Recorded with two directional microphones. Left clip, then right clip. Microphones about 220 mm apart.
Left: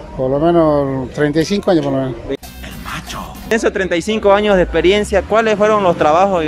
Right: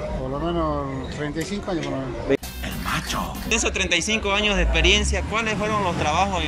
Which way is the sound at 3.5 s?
40° left (ahead or behind).